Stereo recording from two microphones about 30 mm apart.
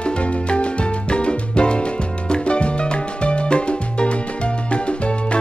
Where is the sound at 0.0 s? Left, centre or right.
Left.